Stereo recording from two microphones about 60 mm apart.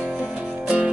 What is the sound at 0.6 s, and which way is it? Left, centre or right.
Music, centre.